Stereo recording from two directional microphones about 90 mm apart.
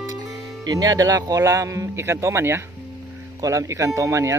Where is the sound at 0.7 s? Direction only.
45° right (ahead or behind).